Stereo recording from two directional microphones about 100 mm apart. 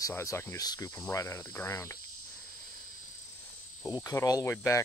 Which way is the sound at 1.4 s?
20° left (ahead or behind).